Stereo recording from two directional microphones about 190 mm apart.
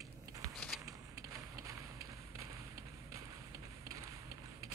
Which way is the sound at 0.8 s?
15° right (ahead or behind).